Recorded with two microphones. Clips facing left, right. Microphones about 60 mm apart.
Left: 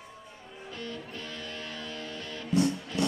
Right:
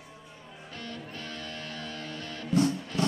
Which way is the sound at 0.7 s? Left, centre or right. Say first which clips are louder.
Left 1 dB; right.